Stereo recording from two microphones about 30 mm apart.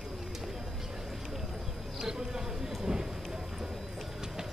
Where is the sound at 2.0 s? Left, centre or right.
Centre.